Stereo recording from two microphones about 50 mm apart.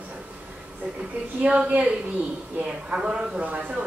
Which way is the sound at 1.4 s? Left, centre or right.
Right.